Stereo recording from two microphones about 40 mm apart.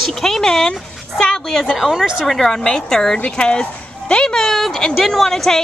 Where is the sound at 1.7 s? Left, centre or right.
Centre.